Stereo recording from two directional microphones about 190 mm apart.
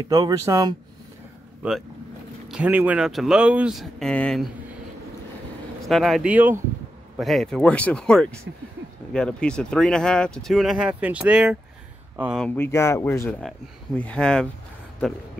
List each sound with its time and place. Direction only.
0.0 s speech: 20° right (ahead or behind)
2.4 s speech: 5° right (ahead or behind)
5.9 s speech: centre (ahead or behind)
12.4 s speech: 10° left (ahead or behind)
13.3 s speech: 5° left (ahead or behind)